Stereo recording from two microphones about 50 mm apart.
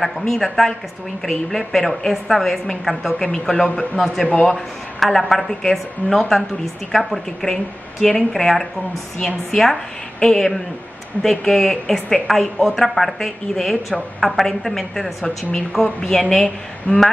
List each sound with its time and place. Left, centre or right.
0.0 s a woman's voice: centre
3.2 s a woman's voice: centre
5.0 s a woman's voice: centre
15.2 s a woman's voice: centre